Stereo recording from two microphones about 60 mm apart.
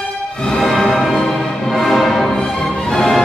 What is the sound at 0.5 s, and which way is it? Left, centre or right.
Music, centre.